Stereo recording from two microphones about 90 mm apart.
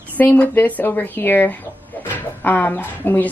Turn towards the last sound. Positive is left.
turn(degrees=25)  # may be behind; listen again after turning